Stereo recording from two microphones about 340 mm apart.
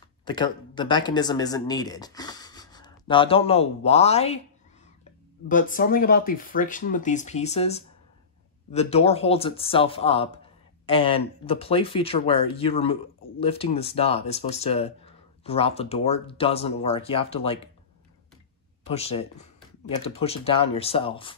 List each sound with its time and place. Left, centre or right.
0.2 s speech: centre
5.5 s speech: left
18.9 s speech: centre